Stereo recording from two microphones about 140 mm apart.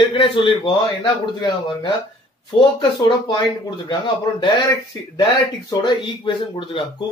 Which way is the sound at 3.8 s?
35° left (ahead or behind).